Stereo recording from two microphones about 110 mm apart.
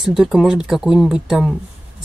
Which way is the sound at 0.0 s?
5° right (ahead or behind).